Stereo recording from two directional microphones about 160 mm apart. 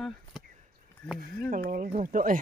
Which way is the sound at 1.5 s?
60° right (ahead or behind).